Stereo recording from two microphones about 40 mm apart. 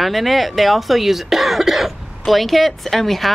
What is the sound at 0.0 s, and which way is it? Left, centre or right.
Speech, centre.